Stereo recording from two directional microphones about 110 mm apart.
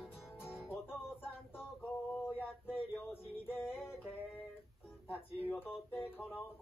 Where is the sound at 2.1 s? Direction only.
20° left (ahead or behind).